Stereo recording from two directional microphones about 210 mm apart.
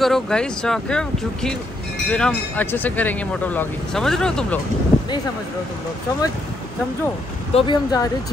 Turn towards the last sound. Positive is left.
turn(degrees=25)  # may be behind; listen again after turning